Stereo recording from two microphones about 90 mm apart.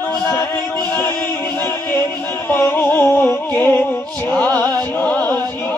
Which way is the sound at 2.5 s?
30° left (ahead or behind).